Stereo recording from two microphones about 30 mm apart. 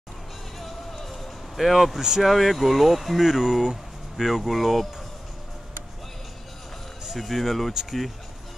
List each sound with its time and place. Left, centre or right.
0.6 s music: centre
1.6 s speech: centre
2.2 s speech: centre
7.2 s speech: centre